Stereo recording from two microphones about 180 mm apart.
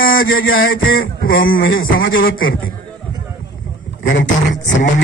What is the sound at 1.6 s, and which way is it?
Speech, 85° left.